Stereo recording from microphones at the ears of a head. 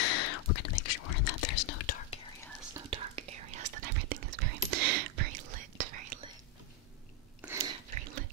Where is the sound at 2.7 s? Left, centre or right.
Right.